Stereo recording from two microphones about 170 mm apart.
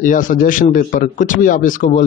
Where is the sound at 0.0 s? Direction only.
50° left (ahead or behind).